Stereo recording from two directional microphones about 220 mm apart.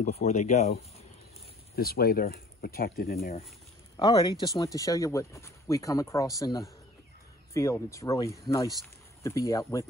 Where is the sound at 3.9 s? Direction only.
15° left (ahead or behind).